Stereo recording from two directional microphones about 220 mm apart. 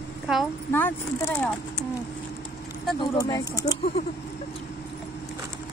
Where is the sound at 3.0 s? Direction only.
15° left (ahead or behind).